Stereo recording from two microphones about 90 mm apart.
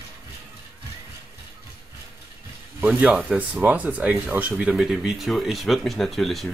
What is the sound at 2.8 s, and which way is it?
Speech, 15° right (ahead or behind).